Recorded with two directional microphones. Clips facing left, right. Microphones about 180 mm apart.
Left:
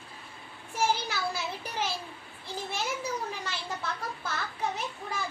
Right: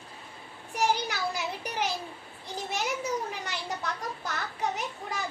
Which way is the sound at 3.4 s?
15° right (ahead or behind).